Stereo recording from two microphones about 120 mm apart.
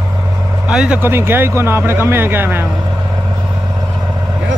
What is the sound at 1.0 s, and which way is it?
Speech, 20° right (ahead or behind).